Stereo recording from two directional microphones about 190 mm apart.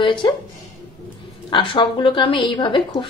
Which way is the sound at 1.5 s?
25° left (ahead or behind).